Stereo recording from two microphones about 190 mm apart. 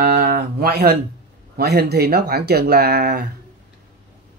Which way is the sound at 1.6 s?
60° right (ahead or behind).